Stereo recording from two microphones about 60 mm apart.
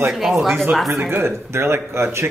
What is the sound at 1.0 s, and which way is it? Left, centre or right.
Speech, right.